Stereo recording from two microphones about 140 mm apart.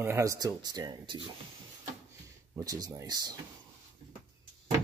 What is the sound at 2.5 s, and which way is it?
Speech, 25° right (ahead or behind).